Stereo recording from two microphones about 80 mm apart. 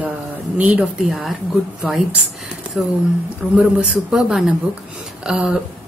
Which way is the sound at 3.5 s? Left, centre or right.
Centre.